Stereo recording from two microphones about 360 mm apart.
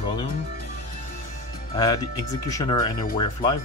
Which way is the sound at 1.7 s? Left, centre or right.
Centre.